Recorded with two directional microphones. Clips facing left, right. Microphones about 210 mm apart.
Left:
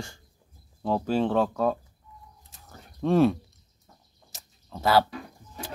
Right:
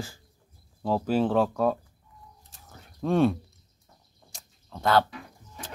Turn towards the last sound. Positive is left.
turn(degrees=10)  # may be behind; listen again after turning